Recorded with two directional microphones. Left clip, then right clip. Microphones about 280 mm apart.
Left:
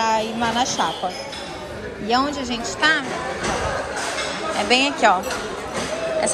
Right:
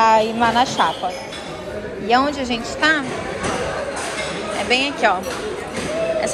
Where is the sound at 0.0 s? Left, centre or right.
Centre.